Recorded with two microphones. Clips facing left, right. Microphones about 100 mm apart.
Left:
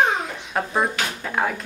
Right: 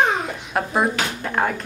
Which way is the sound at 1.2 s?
5° right (ahead or behind).